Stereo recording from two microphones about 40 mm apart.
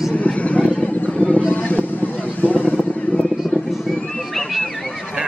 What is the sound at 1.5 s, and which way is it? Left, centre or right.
Vehicle, left.